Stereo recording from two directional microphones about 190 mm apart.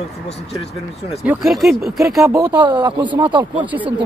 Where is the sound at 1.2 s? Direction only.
5° right (ahead or behind).